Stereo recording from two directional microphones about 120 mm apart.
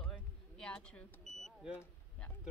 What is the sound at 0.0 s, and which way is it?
Vehicle, 10° left (ahead or behind).